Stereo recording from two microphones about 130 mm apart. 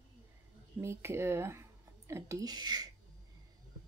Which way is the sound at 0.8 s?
20° right (ahead or behind).